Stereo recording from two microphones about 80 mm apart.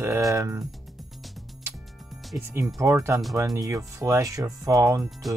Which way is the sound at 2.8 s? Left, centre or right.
Right.